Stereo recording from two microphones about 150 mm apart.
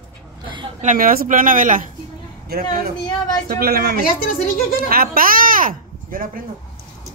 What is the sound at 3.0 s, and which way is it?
Speech, 30° left (ahead or behind).